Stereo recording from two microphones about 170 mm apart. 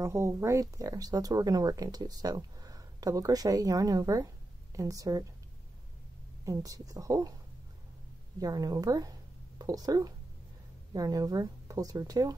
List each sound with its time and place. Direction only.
0.0 s speech: 20° right (ahead or behind)
6.4 s speech: 20° right (ahead or behind)
8.4 s speech: 20° right (ahead or behind)